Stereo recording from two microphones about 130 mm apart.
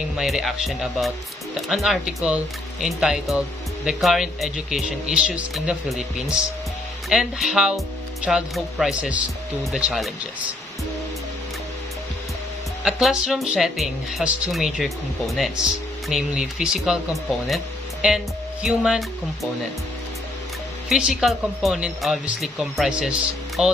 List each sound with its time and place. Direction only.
0.2 s speech: centre (ahead or behind)
12.8 s speech: 5° right (ahead or behind)
16.1 s speech: 5° right (ahead or behind)
20.9 s speech: 5° right (ahead or behind)